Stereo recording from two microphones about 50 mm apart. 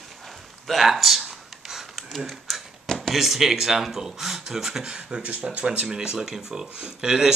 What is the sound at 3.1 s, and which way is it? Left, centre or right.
Speech, centre.